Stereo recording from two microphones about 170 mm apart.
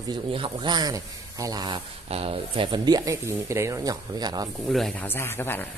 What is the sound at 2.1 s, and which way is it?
Speech, 35° right (ahead or behind).